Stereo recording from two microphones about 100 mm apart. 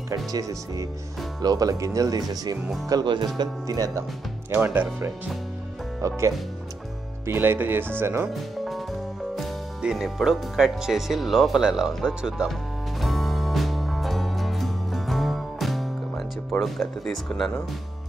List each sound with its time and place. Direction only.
0.1 s speech: 35° right (ahead or behind)
2.9 s music: 50° right (ahead or behind)
3.3 s speech: 40° right (ahead or behind)
4.5 s speech: 20° right (ahead or behind)
5.9 s speech: 30° right (ahead or behind)
9.3 s speech: centre (ahead or behind)
13.0 s music: centre (ahead or behind)
17.0 s speech: 5° left (ahead or behind)